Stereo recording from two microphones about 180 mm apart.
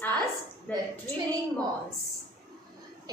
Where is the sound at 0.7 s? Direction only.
10° left (ahead or behind).